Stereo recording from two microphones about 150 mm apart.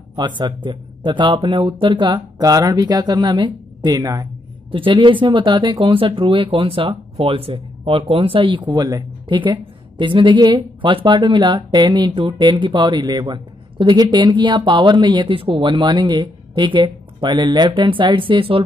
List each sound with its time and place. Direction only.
0.4 s speech: 30° right (ahead or behind)
4.6 s speech: 35° right (ahead or behind)